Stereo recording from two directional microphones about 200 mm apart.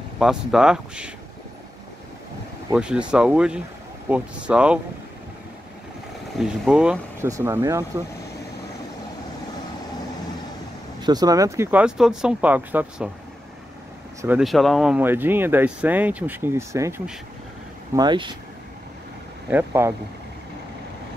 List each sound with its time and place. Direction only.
0.2 s speech: centre (ahead or behind)
2.7 s speech: 5° right (ahead or behind)
6.3 s speech: centre (ahead or behind)
11.0 s speech: 20° right (ahead or behind)
14.2 s speech: 5° right (ahead or behind); by 18.3 s 20° right (ahead or behind)
19.5 s speech: 10° right (ahead or behind)